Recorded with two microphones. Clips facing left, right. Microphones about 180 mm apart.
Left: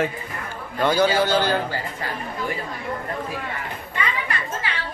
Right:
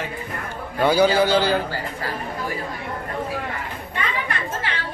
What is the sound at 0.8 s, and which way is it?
Speech, 10° right (ahead or behind).